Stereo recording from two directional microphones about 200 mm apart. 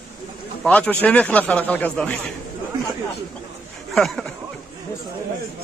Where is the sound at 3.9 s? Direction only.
Centre (ahead or behind).